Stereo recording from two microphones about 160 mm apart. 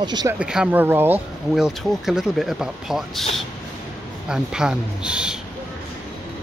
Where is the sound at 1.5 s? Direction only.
Centre (ahead or behind).